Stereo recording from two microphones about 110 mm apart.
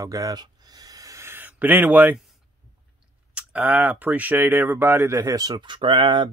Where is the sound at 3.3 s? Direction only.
15° right (ahead or behind).